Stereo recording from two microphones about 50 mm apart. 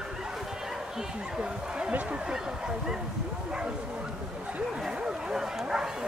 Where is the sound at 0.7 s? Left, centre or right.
Centre.